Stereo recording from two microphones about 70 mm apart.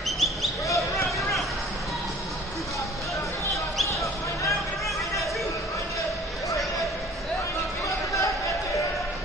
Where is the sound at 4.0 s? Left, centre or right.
Left.